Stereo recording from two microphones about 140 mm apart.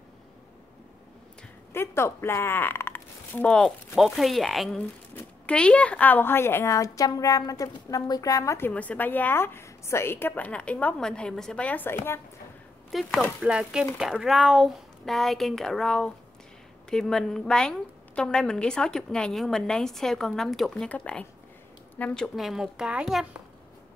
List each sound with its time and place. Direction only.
1.7 s speech: 20° left (ahead or behind)
12.9 s a woman's voice: 5° left (ahead or behind)